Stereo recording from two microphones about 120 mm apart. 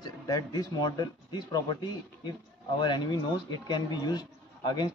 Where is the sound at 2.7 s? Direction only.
40° left (ahead or behind).